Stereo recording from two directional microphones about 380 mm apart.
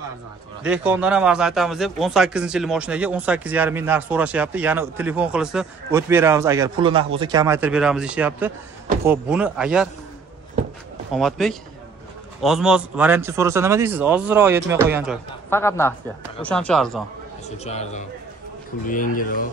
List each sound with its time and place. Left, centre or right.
0.7 s speech: centre
11.1 s speech: centre
15.5 s a man's voice: centre
17.5 s a man's voice: centre